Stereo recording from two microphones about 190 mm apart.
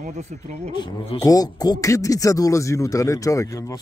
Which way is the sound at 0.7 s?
25° left (ahead or behind).